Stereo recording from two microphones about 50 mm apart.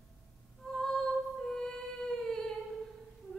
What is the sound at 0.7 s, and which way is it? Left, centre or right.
Music, centre.